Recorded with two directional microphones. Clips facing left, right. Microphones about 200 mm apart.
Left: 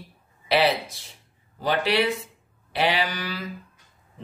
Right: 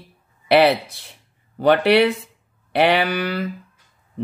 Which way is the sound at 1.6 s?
60° right (ahead or behind).